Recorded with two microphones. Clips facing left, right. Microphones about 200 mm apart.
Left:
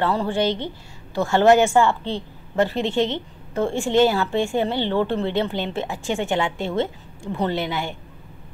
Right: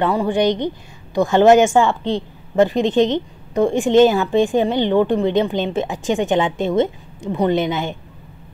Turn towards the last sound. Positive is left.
turn(degrees=-20)  # may be behind; listen again after turning